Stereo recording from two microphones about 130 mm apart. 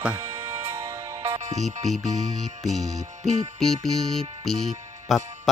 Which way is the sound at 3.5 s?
Centre (ahead or behind).